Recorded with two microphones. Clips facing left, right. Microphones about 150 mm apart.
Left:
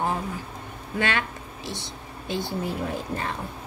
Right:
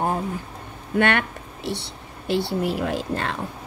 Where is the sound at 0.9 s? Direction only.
60° right (ahead or behind); by 3.3 s 80° right.